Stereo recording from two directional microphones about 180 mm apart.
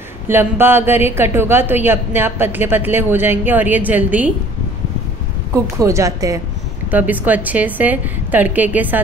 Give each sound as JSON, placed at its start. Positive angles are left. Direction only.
{"t": 0.3, "sound": "a woman's voice", "side_deg": -10}
{"t": 5.8, "sound": "a woman's voice", "side_deg": -15}